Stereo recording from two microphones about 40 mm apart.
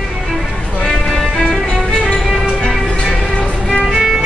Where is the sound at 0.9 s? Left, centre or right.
Centre.